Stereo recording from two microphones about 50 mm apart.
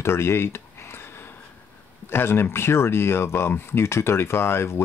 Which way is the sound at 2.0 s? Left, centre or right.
Left.